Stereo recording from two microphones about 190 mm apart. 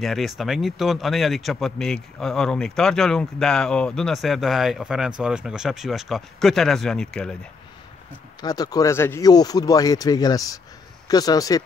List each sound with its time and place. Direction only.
0.0 s speech: centre (ahead or behind)
8.4 s speech: 20° left (ahead or behind)